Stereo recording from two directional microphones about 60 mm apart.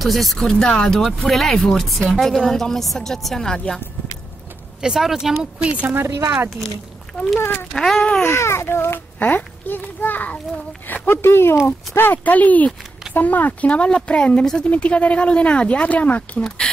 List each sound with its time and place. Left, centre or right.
0.0 s speech: centre
4.8 s speech: centre
5.9 s speech: right
7.3 s speech: left
7.7 s a child's voice: centre
8.0 s speech: left
8.4 s a child's voice: left
9.2 s speech: left; by 16.7 s centre